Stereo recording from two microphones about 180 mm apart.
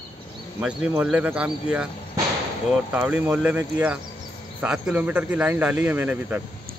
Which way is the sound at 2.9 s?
10° right (ahead or behind).